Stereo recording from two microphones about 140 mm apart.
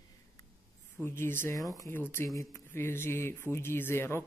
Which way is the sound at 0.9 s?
15° left (ahead or behind).